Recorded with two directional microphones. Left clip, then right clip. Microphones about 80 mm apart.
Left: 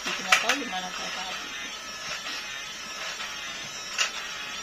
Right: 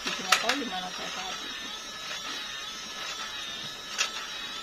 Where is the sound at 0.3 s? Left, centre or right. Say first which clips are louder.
Left 3 dB; right.